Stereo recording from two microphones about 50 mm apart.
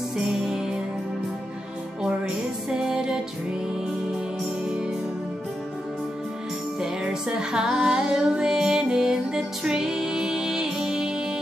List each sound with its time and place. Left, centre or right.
2.7 s music: centre
6.8 s music: centre